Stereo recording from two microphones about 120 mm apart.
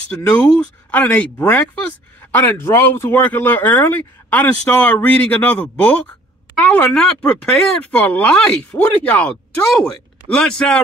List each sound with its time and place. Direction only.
0.1 s speech: 20° left (ahead or behind)